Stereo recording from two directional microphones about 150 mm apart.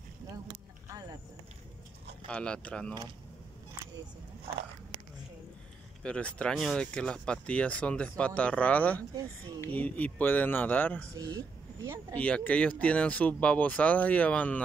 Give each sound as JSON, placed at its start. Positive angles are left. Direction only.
{"t": 2.2, "sound": "speech", "side_deg": 5}
{"t": 6.0, "sound": "speech", "side_deg": 5}
{"t": 11.1, "sound": "speech", "side_deg": -25}
{"t": 12.2, "sound": "speech", "side_deg": 10}